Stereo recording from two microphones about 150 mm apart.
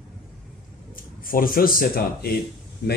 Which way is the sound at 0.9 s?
70° left (ahead or behind).